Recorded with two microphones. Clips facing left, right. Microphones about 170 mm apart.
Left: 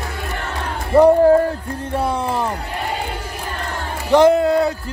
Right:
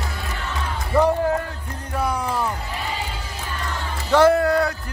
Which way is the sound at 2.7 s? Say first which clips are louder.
Left 4 dB; 60° left (ahead or behind).